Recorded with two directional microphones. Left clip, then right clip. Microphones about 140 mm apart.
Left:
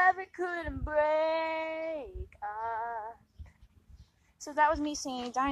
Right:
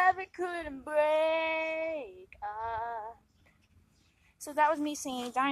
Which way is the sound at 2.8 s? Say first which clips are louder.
Even; 10° left (ahead or behind).